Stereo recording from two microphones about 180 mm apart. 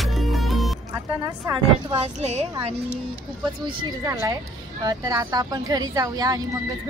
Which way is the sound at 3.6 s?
20° right (ahead or behind).